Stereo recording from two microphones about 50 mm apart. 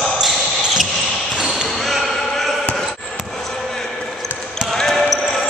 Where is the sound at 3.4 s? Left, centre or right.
Centre.